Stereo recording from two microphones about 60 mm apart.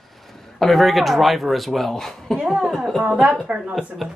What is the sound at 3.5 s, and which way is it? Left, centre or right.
Speech, right.